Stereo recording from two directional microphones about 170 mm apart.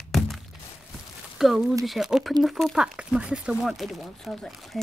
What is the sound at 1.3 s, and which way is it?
Speech, centre (ahead or behind).